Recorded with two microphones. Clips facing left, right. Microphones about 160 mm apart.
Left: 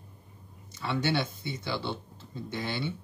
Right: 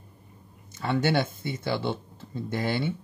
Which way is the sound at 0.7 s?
50° right (ahead or behind).